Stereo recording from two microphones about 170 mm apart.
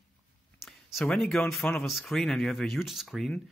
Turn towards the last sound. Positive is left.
turn(degrees=0)  # may be behind; listen again after turning